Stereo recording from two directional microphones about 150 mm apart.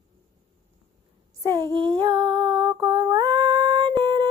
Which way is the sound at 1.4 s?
25° right (ahead or behind).